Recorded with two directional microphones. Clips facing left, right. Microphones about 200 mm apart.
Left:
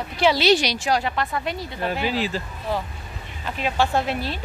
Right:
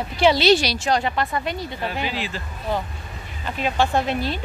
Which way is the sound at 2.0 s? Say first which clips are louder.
Left 4 dB; 40° left (ahead or behind).